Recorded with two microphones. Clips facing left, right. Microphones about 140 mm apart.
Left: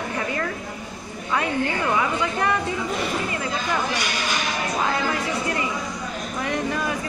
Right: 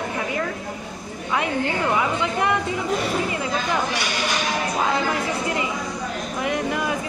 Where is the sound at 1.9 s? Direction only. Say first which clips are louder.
Right 1 dB; 15° right (ahead or behind).